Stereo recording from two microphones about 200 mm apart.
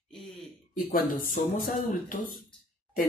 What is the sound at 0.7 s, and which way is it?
Speech, 45° left (ahead or behind).